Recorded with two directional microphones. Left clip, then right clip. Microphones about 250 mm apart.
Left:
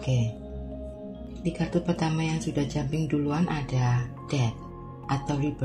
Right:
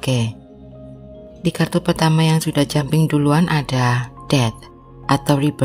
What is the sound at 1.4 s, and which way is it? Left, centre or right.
Speech, right.